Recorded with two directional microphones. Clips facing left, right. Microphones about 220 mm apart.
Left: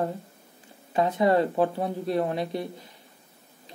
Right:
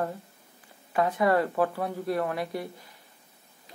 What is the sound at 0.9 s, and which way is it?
Speech, 25° left (ahead or behind).